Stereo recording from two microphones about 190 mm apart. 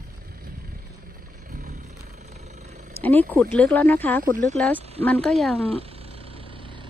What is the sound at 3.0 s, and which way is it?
Speech, 10° left (ahead or behind).